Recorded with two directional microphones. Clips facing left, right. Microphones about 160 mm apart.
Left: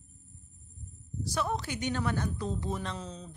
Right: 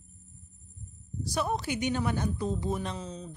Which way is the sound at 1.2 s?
15° right (ahead or behind).